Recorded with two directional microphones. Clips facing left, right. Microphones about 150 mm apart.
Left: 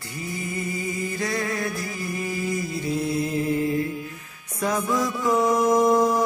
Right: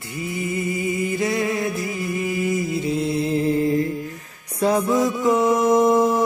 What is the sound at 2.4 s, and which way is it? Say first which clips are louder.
Mantra: right 5 dB; 20° right (ahead or behind).